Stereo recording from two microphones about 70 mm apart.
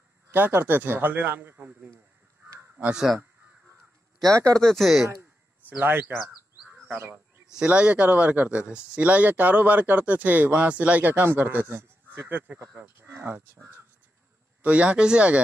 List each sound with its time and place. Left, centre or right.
0.3 s speech: right
4.3 s speech: right
4.6 s speech: centre
5.7 s speech: right
6.2 s bird: centre
7.4 s speech: centre; by 13.2 s right
14.6 s speech: centre